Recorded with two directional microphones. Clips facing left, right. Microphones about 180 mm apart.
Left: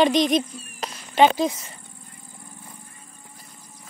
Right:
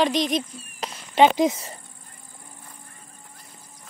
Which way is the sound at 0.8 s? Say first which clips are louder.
Even; 20° right (ahead or behind).